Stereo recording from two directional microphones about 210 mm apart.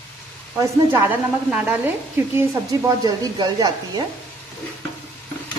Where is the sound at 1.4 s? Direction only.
5° right (ahead or behind).